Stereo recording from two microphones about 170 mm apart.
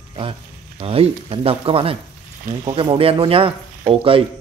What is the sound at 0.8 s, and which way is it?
Speech, 35° right (ahead or behind).